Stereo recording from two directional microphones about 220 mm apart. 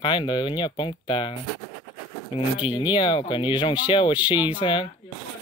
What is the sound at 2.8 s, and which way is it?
Speech, 20° left (ahead or behind).